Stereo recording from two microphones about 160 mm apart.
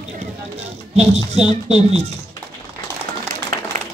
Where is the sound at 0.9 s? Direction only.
40° right (ahead or behind).